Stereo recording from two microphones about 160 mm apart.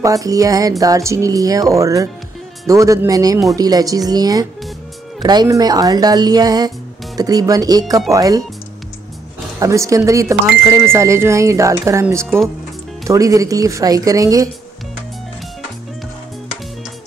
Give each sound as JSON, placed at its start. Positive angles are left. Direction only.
{"t": 0.0, "sound": "speech", "side_deg": -20}
{"t": 9.6, "sound": "speech", "side_deg": -20}